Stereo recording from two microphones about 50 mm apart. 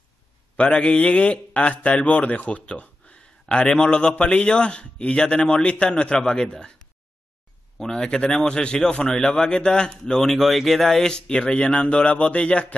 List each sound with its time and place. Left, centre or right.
0.6 s a man's voice: left
4.2 s a man's voice: left
7.8 s a man's voice: centre